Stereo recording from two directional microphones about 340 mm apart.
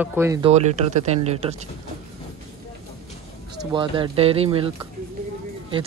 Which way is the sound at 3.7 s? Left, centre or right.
Centre.